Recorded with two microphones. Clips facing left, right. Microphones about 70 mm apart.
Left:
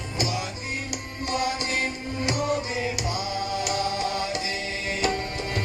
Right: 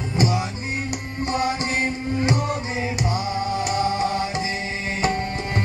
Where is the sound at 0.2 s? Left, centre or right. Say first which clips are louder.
Right 6 dB; right.